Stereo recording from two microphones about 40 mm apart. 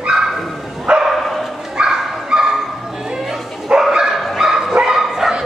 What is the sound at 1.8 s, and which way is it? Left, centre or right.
Bow-wow, centre.